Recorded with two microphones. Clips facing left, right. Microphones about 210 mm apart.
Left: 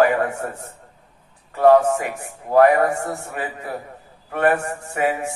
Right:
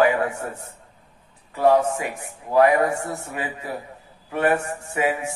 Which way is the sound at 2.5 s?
50° left (ahead or behind).